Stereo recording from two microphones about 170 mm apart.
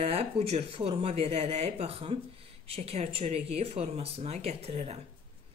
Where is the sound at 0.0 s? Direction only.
35° right (ahead or behind).